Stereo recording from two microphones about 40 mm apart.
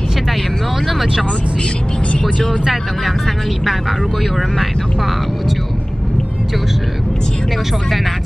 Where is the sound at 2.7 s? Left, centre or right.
Centre.